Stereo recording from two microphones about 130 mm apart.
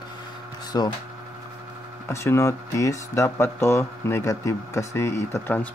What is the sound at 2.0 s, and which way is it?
Speech, 20° left (ahead or behind).